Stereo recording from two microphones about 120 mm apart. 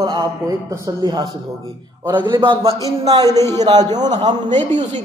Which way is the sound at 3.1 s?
30° right (ahead or behind).